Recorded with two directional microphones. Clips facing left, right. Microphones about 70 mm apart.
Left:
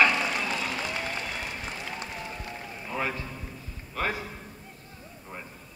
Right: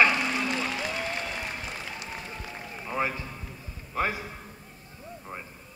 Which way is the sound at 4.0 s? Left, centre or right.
Right.